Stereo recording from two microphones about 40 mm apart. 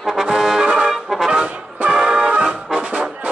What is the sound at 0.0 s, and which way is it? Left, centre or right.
Brass instrument, centre.